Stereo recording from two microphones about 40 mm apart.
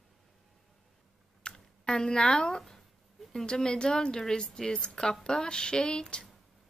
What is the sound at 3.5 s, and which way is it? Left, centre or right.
Speech, left.